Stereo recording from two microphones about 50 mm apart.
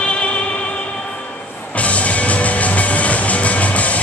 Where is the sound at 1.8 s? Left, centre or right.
Left.